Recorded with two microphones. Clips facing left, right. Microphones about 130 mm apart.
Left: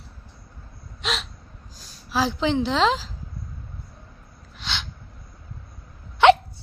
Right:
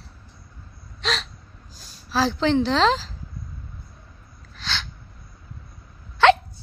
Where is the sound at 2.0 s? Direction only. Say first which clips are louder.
Right 2 dB; 15° left (ahead or behind).